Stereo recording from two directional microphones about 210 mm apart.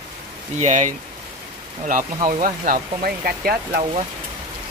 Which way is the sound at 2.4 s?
45° right (ahead or behind).